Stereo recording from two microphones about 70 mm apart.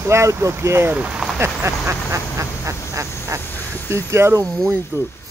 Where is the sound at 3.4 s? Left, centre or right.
Left.